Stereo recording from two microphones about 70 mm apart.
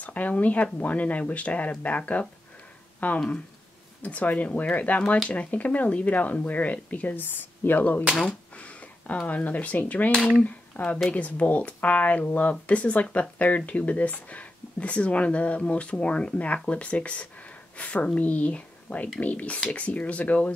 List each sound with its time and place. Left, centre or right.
0.0 s speech: left
8.3 s a sound: centre
9.3 s speech: left